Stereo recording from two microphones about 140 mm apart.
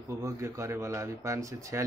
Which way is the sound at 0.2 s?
20° right (ahead or behind).